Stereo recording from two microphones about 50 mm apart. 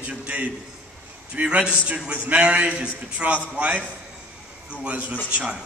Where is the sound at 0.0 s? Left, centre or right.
Right.